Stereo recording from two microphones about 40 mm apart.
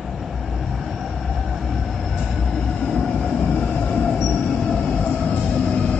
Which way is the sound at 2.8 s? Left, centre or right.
Centre.